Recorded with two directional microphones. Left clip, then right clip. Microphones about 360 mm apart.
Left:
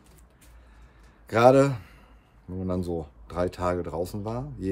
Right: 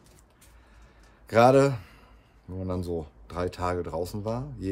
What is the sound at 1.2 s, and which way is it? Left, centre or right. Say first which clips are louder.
Speech: left 1 dB; centre.